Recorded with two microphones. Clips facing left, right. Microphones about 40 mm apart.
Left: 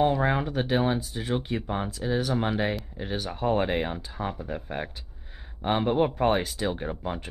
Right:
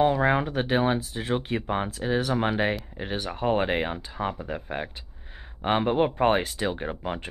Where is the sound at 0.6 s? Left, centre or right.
Right.